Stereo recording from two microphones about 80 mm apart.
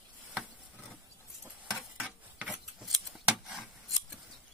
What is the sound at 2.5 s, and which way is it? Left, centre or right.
Scissors, centre.